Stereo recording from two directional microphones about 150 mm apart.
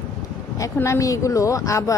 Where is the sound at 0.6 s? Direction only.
20° left (ahead or behind).